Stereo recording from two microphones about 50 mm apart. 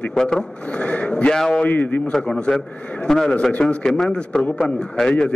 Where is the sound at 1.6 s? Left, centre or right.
Left.